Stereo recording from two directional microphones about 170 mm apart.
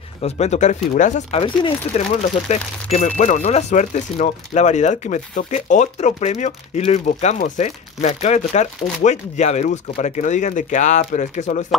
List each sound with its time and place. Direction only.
0.2 s speech: 40° left (ahead or behind)
1.4 s speech: 30° left (ahead or behind)